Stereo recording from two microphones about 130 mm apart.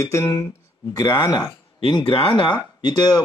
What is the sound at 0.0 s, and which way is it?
Speech, 25° left (ahead or behind).